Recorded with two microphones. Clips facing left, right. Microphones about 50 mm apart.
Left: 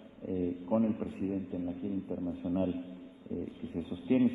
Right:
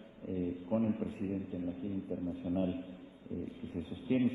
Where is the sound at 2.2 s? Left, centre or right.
Left.